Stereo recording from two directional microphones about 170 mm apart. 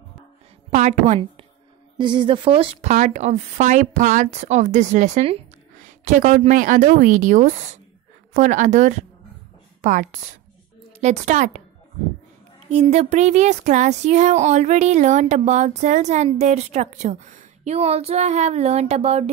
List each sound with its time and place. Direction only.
0.7 s a woman's voice: 40° right (ahead or behind)
2.0 s a woman's voice: 30° right (ahead or behind); by 11.6 s 45° right (ahead or behind)
12.6 s speech: 40° right (ahead or behind)